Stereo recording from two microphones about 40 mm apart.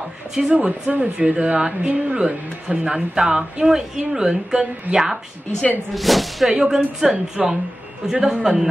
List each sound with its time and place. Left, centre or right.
0.5 s a woman's voice: right; by 5.2 s centre
5.9 s speech: centre
6.5 s a woman's voice: centre